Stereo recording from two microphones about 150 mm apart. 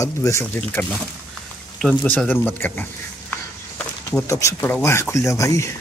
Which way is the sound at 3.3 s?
10° left (ahead or behind).